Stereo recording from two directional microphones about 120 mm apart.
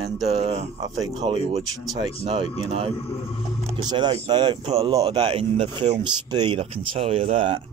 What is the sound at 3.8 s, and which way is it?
Speech, 35° right (ahead or behind).